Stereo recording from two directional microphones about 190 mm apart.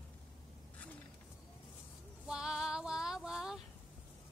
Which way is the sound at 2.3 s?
5° right (ahead or behind).